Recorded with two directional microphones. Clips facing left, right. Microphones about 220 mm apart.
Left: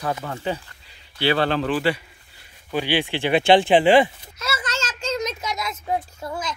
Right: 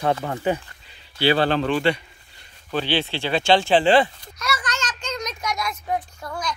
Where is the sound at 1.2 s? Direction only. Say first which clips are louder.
Right 1 dB; 30° right (ahead or behind).